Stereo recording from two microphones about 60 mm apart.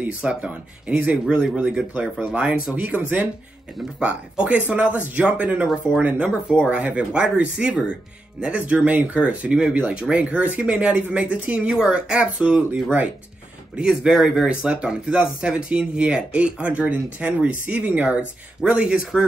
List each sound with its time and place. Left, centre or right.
0.0 s speech: right
4.0 s speech: right